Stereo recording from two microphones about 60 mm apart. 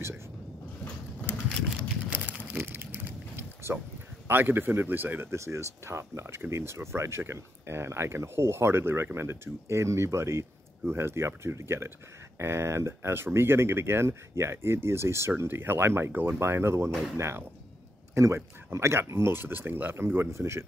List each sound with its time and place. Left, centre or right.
2.2 s a sound: right
3.7 s speech: right
5.4 s speech: right